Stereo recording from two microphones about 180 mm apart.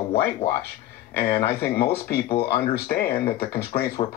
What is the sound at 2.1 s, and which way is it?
Speech, 55° left (ahead or behind).